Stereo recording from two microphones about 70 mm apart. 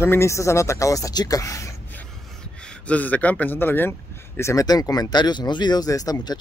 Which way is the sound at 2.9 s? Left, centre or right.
Left.